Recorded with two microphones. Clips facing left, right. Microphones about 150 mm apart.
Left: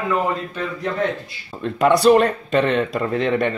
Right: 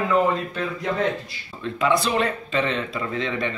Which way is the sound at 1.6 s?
45° left (ahead or behind).